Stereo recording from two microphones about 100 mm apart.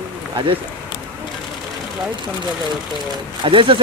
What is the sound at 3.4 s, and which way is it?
Speech, 60° right (ahead or behind).